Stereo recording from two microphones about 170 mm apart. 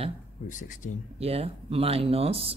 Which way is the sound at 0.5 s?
50° left (ahead or behind).